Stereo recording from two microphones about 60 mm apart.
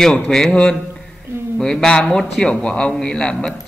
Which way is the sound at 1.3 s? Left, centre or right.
Right.